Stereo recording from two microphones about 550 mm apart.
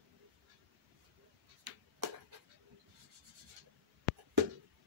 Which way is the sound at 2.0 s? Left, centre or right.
Right.